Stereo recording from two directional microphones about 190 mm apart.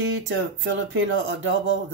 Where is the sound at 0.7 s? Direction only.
85° right.